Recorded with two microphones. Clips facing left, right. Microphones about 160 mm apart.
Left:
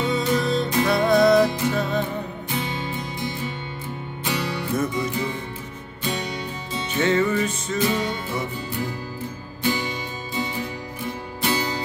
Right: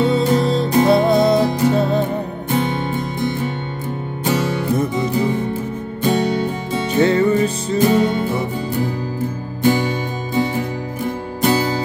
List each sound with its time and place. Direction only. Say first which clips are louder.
0.4 s music: right 6 dB; 30° right (ahead or behind)
2.5 s music: right 9 dB; 55° right (ahead or behind)
4.7 s music: right 2 dB; 30° right (ahead or behind)
6.0 s music: right 11 dB; 55° right (ahead or behind)
6.9 s music: right 6 dB; 35° right (ahead or behind)